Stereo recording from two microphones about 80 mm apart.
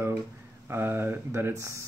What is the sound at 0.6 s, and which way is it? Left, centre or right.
Speech, right.